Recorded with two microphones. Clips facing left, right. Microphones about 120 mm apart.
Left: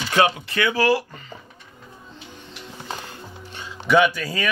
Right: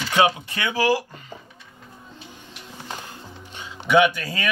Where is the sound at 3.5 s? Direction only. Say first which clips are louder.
Even; 20° right (ahead or behind).